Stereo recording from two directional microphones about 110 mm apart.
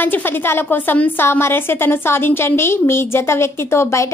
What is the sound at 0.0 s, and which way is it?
A woman's voice, 20° left (ahead or behind).